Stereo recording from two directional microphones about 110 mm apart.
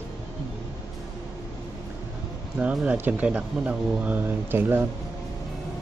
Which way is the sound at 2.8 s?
15° right (ahead or behind).